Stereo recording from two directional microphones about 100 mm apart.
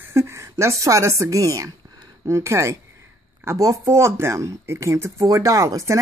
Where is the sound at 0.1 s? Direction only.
30° right (ahead or behind).